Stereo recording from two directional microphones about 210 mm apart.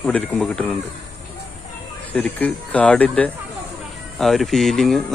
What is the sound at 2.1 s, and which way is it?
A man's voice, 5° left (ahead or behind).